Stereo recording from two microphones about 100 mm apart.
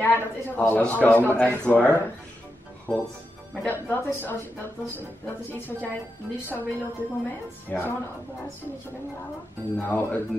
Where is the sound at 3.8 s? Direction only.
20° left (ahead or behind).